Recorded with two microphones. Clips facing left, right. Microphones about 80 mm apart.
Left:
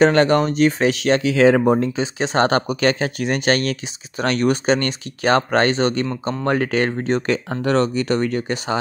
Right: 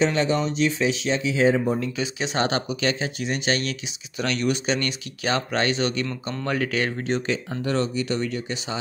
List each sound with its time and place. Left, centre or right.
0.0 s speech: left
1.8 s speech: left
7.4 s speech: left